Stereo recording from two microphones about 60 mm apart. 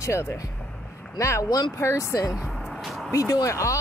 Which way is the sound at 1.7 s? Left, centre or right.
Left.